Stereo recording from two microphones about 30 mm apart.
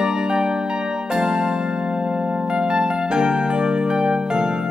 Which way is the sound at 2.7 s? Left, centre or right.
Right.